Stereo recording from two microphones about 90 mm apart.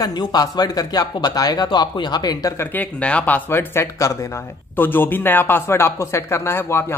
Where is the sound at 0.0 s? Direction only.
50° left (ahead or behind).